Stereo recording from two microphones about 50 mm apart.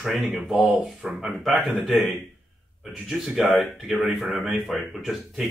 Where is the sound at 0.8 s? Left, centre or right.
Centre.